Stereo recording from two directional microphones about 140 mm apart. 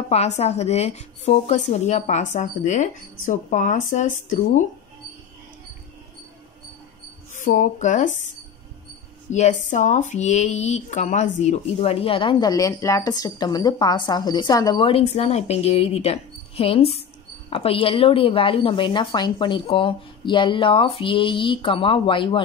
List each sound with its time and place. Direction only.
0.1 s speech: 50° left (ahead or behind); by 4.6 s 70° left (ahead or behind)
7.3 s speech: 65° left (ahead or behind)
9.3 s a woman's voice: 60° left (ahead or behind); by 22.4 s 35° left (ahead or behind)